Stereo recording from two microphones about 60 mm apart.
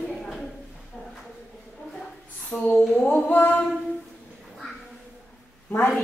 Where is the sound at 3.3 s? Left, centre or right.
Left.